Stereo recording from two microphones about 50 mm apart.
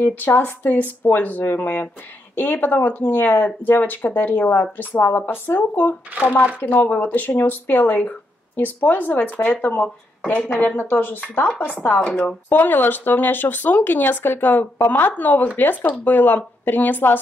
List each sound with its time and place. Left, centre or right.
0.0 s speech: left